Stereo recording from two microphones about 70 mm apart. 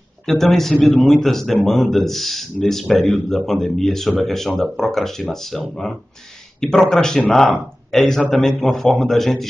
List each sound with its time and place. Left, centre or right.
0.3 s speech: centre
0.7 s a man's voice: left
1.2 s a man's voice: centre